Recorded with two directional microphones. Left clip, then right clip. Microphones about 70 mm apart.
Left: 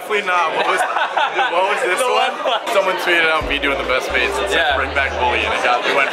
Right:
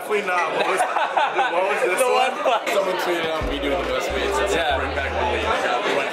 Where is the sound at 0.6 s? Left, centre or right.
Centre.